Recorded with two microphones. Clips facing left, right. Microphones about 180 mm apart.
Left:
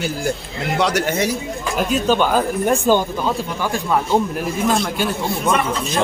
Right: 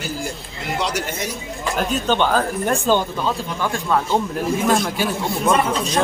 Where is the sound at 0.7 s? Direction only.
70° left (ahead or behind).